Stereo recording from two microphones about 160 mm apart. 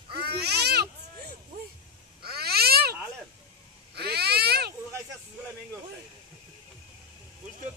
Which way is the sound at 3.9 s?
90° right.